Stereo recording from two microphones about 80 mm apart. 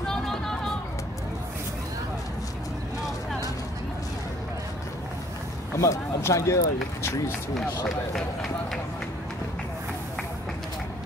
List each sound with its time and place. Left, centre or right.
0.0 s a sound: centre
5.8 s speech: left
8.1 s speech: centre